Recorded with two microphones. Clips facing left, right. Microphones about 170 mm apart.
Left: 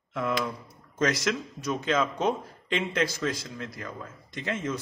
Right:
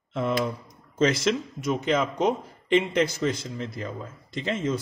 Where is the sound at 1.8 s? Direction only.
15° right (ahead or behind).